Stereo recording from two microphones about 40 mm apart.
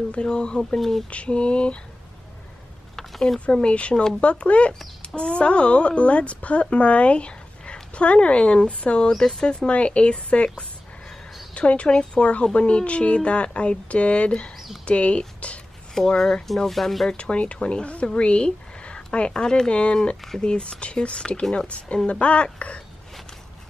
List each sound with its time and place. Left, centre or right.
0.1 s a woman's voice: left
0.7 s speech: centre
1.1 s a woman's voice: left
3.0 s a sound: centre
3.5 s a woman's voice: left
3.9 s speech: centre
4.2 s a woman's voice: left
9.7 s a woman's voice: left
16.0 s speech: centre
17.2 s a woman's voice: left